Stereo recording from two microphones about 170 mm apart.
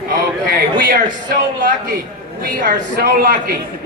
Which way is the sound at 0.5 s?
60° right (ahead or behind).